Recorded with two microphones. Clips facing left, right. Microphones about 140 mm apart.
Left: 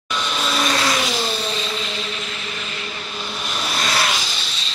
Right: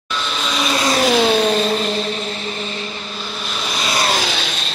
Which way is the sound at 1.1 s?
80° right.